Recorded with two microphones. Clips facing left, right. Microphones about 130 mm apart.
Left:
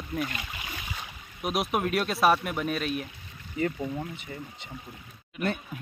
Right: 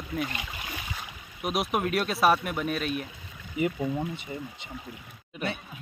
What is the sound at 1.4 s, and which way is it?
Speech, centre (ahead or behind).